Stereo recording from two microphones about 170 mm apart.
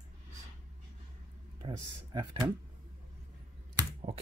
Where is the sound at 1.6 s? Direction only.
25° right (ahead or behind).